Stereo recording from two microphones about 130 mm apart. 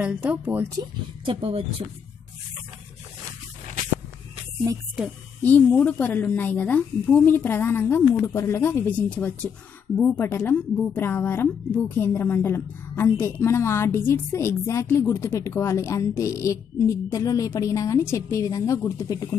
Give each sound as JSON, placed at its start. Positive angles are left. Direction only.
{"t": 0.0, "sound": "speech", "side_deg": -10}
{"t": 0.7, "sound": "speech", "side_deg": -40}
{"t": 5.7, "sound": "a woman's voice", "side_deg": 10}